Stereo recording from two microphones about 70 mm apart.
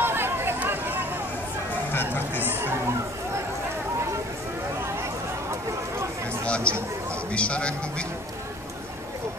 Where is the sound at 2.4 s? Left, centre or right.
Right.